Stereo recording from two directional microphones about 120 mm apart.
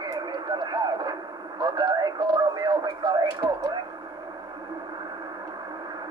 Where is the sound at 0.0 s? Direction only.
35° right (ahead or behind).